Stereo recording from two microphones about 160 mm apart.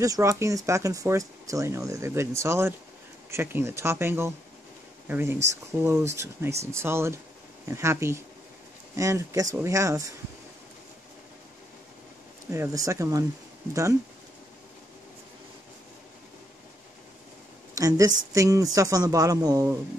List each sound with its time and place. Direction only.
0.0 s speech: 20° right (ahead or behind)
12.4 s speech: 20° right (ahead or behind)
17.7 s speech: 20° right (ahead or behind)